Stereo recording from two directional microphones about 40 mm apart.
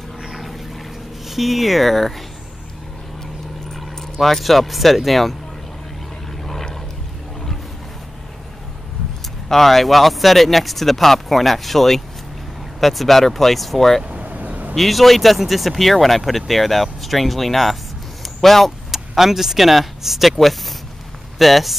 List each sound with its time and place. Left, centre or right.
0.2 s vehicle: centre
1.3 s speech: centre
3.7 s speech: centre
6.4 s vehicle: centre
9.5 s speech: centre
14.0 s vehicle: right
14.8 s speech: centre
18.2 s a sound: centre
18.9 s speech: centre